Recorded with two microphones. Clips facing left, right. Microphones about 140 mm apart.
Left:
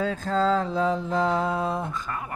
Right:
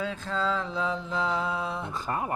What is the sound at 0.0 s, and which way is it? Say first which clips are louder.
Mantra: left 6 dB; 40° left (ahead or behind).